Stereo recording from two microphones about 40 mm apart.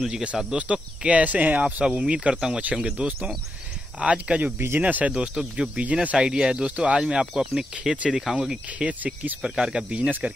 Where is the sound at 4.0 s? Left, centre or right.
Right.